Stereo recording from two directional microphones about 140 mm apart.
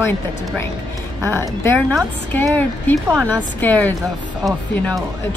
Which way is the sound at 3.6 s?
15° left (ahead or behind).